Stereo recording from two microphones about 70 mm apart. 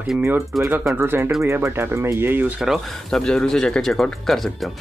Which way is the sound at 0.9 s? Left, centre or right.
Right.